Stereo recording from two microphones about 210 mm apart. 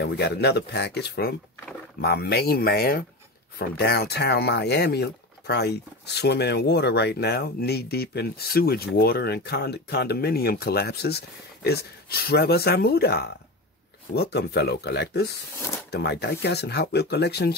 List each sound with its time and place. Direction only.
0.0 s speech: 55° left (ahead or behind)